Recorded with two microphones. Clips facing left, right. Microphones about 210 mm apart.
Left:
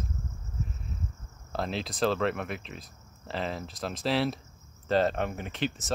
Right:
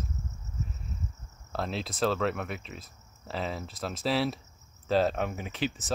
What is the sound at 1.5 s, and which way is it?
Speech, centre (ahead or behind).